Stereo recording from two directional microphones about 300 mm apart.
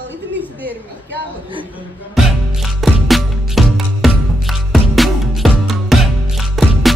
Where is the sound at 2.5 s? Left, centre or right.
Centre.